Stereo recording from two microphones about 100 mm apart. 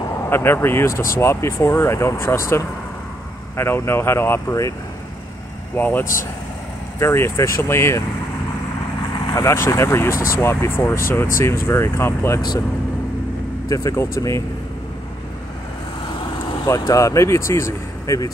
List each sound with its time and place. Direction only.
0.3 s speech: 25° left (ahead or behind)
5.8 s speech: 15° left (ahead or behind)
9.3 s speech: 30° left (ahead or behind)
12.4 s speech: 40° left (ahead or behind)
13.7 s speech: 30° left (ahead or behind)
16.6 s speech: 35° left (ahead or behind)